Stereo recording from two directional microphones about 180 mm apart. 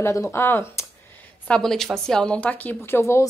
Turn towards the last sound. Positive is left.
turn(degrees=15)  # may be behind; listen again after turning